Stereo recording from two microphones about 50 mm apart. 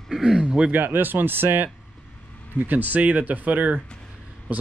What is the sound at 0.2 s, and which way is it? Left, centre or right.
Speech, centre.